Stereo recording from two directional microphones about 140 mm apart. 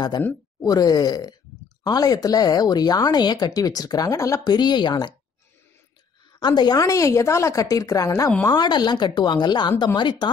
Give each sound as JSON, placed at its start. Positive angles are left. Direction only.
{"t": 0.7, "sound": "speech", "side_deg": 25}
{"t": 6.4, "sound": "speech", "side_deg": 30}